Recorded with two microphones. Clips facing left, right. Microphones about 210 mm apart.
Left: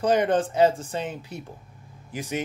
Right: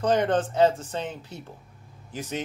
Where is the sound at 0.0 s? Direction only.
10° left (ahead or behind).